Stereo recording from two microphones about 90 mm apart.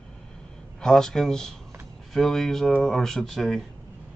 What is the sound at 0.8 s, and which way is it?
Speech, 5° left (ahead or behind).